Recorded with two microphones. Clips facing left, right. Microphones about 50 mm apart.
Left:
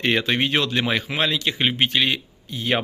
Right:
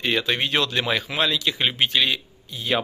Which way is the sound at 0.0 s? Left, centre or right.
Left.